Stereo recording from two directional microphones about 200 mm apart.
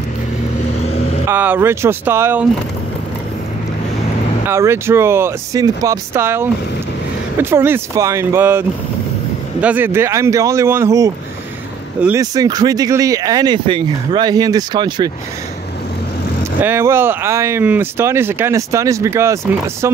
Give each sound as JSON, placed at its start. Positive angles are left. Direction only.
{"t": 1.2, "sound": "speech", "side_deg": -10}
{"t": 4.5, "sound": "speech", "side_deg": -15}
{"t": 16.6, "sound": "speech", "side_deg": -10}